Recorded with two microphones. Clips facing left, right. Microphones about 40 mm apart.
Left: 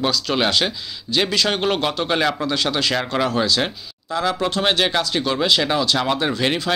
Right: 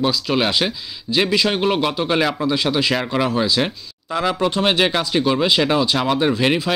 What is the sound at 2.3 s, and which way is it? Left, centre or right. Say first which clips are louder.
Speech: right 2 dB; centre.